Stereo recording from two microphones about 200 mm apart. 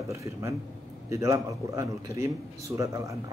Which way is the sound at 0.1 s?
15° right (ahead or behind).